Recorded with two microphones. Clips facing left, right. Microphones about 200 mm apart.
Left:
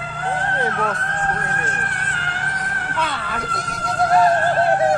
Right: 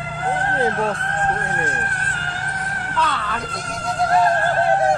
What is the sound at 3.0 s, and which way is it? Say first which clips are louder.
Speech: right 2 dB; 10° left (ahead or behind).